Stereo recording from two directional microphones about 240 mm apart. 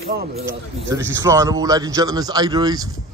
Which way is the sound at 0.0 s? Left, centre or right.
Right.